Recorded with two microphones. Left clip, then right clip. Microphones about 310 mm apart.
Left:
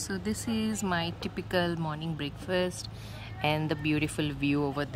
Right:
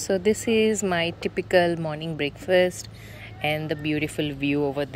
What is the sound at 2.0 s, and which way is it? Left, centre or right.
Speech, left.